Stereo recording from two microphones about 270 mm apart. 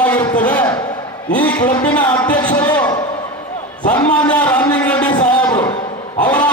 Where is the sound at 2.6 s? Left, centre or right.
Centre.